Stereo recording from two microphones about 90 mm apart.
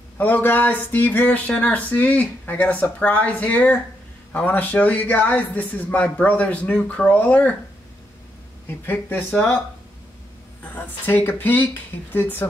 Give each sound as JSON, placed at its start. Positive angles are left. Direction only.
{"t": 0.2, "sound": "speech", "side_deg": 20}
{"t": 8.6, "sound": "speech", "side_deg": 25}
{"t": 10.6, "sound": "speech", "side_deg": 20}